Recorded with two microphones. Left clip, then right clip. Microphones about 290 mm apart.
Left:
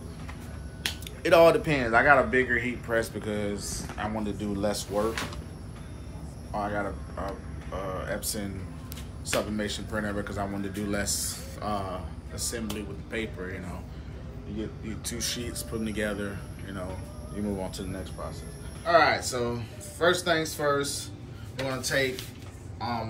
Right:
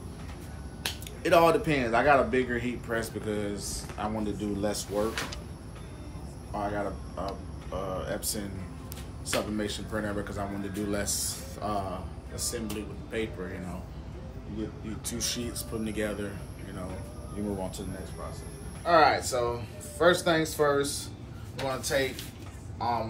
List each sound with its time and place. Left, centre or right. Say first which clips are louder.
0.8 s speech: left 2 dB; centre
6.5 s speech: left 1 dB; centre
15.0 s speech: even; centre
17.6 s speech: left 1 dB; centre
18.9 s speech: even; centre